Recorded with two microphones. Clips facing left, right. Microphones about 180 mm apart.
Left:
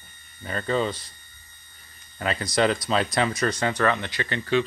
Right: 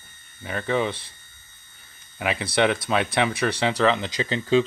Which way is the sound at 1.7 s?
5° right (ahead or behind).